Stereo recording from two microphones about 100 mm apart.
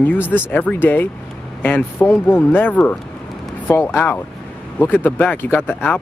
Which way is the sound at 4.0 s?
20° left (ahead or behind).